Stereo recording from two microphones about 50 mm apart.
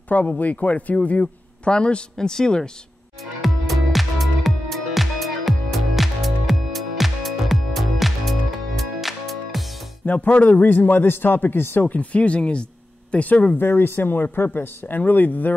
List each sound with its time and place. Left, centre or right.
0.1 s a man's voice: left; by 2.7 s centre
3.3 s music: centre
10.0 s a man's voice: left
13.6 s a man's voice: left